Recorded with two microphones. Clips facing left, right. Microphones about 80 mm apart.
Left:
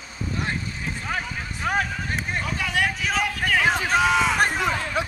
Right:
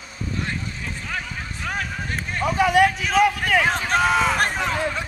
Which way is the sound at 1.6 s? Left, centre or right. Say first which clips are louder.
Left 5 dB; left.